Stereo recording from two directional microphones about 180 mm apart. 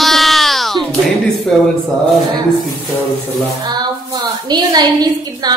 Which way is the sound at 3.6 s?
20° right (ahead or behind).